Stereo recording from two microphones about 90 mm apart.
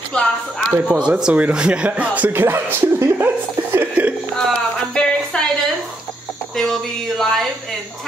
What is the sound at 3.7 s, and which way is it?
Speech, 15° right (ahead or behind).